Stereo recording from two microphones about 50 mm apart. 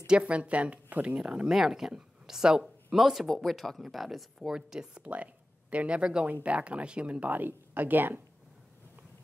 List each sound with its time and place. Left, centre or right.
0.0 s speech: centre
1.5 s speech: centre
4.6 s speech: centre
5.1 s speech: right